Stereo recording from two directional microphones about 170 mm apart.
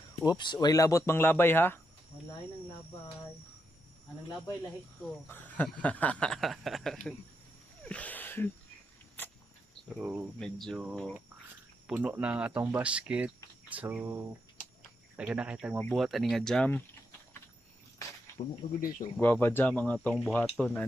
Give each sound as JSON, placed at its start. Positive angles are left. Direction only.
{"t": 0.2, "sound": "speech", "side_deg": 25}
{"t": 5.0, "sound": "speech", "side_deg": 10}
{"t": 7.9, "sound": "a sound", "side_deg": 10}
{"t": 9.8, "sound": "speech", "side_deg": -10}
{"t": 10.4, "sound": "speech", "side_deg": 0}
{"t": 18.4, "sound": "speech", "side_deg": 35}
{"t": 18.8, "sound": "speech", "side_deg": 55}
{"t": 19.1, "sound": "speech", "side_deg": 10}